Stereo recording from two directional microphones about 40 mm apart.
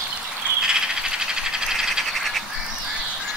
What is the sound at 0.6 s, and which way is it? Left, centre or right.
Frog, centre.